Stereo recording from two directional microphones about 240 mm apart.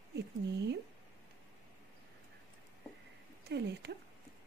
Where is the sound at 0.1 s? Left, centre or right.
Right.